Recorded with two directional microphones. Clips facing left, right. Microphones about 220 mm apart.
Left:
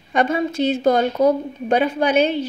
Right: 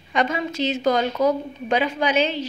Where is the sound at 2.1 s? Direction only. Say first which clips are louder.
Left 5 dB; 55° left (ahead or behind).